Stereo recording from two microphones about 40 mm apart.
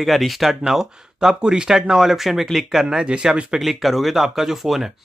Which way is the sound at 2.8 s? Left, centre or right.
Right.